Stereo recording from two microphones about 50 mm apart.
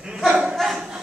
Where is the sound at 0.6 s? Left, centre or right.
Centre.